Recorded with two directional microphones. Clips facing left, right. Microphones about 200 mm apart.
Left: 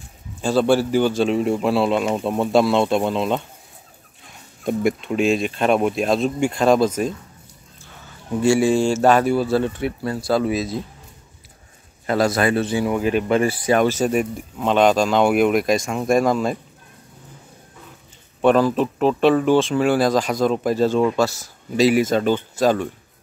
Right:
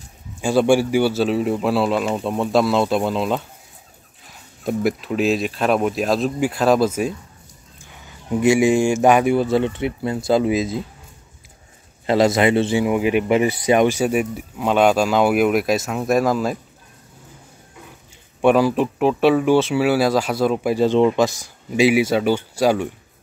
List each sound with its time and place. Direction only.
0.4 s a man's voice: 10° right (ahead or behind)
12.1 s speech: 20° right (ahead or behind); by 16.5 s 5° right (ahead or behind)
18.4 s speech: 10° right (ahead or behind)